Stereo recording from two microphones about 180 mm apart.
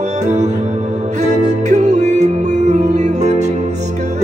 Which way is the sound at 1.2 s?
40° right (ahead or behind).